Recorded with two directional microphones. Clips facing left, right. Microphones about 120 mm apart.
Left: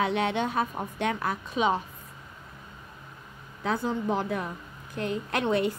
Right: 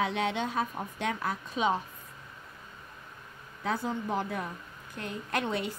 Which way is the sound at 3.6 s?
90° left.